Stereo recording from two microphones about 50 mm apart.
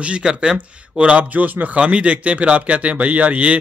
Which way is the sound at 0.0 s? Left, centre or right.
Centre.